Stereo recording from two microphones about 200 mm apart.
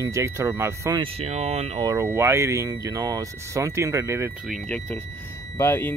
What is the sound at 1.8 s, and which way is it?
Speech, 15° right (ahead or behind).